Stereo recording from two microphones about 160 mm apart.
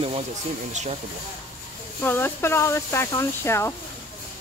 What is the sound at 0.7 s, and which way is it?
Speech, 45° right (ahead or behind).